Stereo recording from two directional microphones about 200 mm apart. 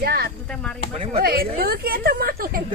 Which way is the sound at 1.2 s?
50° right (ahead or behind).